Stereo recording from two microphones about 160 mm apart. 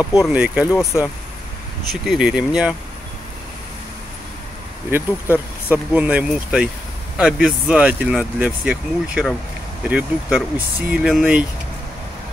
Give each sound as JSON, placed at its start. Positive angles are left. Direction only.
{"t": 0.3, "sound": "speech", "side_deg": -10}
{"t": 0.7, "sound": "speech", "side_deg": 20}
{"t": 1.9, "sound": "speech", "side_deg": 0}
{"t": 4.9, "sound": "speech", "side_deg": -10}